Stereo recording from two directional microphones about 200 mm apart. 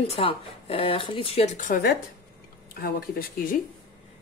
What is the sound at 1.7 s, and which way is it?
Speech, 55° left (ahead or behind).